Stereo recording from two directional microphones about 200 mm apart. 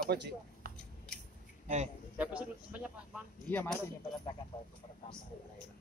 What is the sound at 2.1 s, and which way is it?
Speech, 5° right (ahead or behind).